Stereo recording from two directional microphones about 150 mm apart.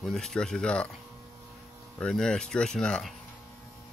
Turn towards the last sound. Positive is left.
turn(degrees=5)  # may be behind; listen again after turning